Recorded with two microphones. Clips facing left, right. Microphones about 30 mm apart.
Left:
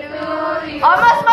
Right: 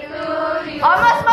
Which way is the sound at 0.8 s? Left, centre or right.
Centre.